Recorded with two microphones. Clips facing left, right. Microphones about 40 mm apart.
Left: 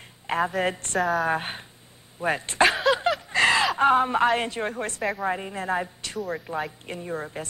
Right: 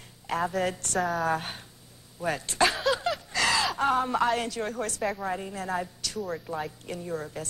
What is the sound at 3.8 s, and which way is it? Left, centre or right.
Speech, left.